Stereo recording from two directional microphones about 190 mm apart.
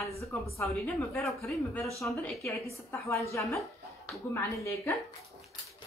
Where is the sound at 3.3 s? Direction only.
15° left (ahead or behind).